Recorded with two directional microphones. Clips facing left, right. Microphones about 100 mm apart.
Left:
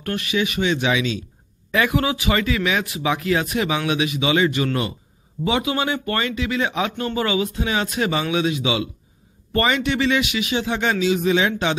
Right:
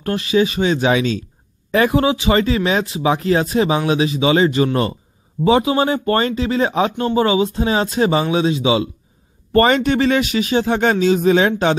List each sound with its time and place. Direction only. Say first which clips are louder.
0.0 s speech: right 6 dB; 30° right (ahead or behind)
9.5 s a man's voice: right 6 dB; 45° right (ahead or behind)